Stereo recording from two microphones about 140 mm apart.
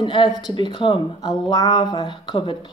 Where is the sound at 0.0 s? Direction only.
35° left (ahead or behind).